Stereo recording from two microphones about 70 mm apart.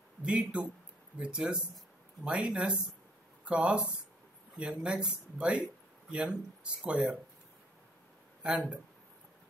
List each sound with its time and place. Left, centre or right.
0.2 s speech: centre
8.4 s speech: centre